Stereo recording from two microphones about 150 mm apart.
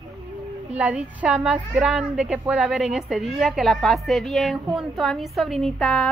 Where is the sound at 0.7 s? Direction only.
10° right (ahead or behind).